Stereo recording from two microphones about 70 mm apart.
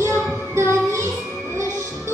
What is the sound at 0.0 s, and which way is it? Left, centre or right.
Music, right.